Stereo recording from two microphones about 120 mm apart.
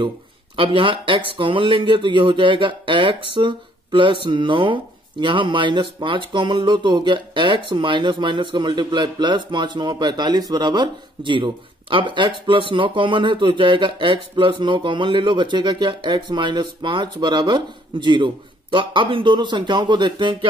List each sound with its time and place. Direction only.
0.6 s speech: 45° right (ahead or behind)